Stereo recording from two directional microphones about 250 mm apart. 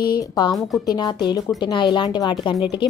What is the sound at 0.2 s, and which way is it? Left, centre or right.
A woman's voice, centre.